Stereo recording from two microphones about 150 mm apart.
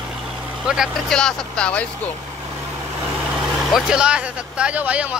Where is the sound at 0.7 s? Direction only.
Centre (ahead or behind).